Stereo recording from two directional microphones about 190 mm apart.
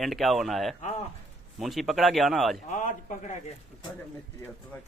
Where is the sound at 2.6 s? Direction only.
40° left (ahead or behind).